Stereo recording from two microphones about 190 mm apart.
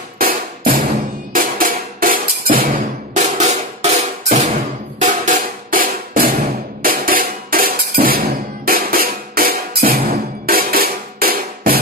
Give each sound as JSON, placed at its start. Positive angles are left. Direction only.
{"t": 0.2, "sound": "music", "side_deg": -50}
{"t": 3.2, "sound": "drum", "side_deg": -35}
{"t": 6.8, "sound": "music", "side_deg": -50}